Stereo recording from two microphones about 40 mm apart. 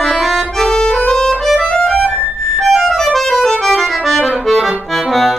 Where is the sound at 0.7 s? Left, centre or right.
Centre.